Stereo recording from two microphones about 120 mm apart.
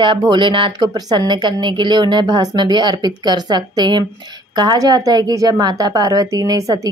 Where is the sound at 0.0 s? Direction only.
40° right (ahead or behind).